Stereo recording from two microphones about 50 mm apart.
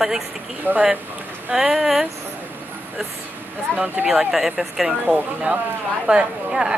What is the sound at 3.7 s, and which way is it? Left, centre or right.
Speech, left.